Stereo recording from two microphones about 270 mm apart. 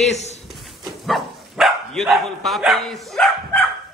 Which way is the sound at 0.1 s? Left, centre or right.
Left.